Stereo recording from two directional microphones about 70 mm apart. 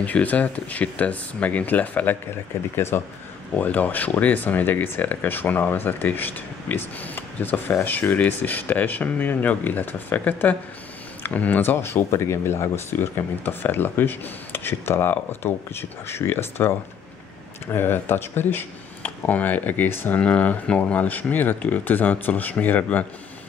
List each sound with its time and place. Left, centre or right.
0.0 s speech: left
2.7 s speech: left
3.5 s speech: left
17.7 s speech: left